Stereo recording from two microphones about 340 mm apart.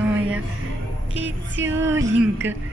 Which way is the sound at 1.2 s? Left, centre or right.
Right.